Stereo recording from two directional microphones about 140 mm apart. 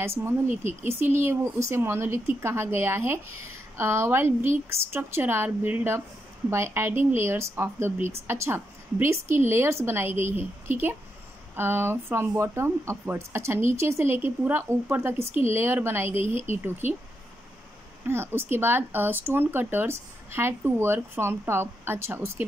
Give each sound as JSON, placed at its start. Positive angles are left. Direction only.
{"t": 0.2, "sound": "a woman's voice", "side_deg": -15}
{"t": 18.0, "sound": "a woman's voice", "side_deg": -15}